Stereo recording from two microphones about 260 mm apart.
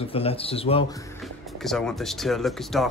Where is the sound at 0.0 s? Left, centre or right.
Left.